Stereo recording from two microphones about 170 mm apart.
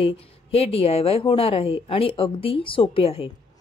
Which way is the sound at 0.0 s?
35° left (ahead or behind).